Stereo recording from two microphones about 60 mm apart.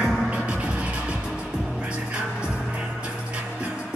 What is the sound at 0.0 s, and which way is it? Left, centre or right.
Music, centre.